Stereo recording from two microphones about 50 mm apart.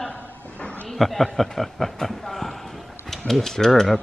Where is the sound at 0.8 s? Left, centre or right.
Centre.